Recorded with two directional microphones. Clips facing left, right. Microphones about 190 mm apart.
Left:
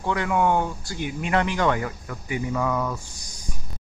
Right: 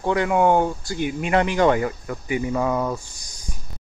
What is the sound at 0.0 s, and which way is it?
Speech, 20° right (ahead or behind).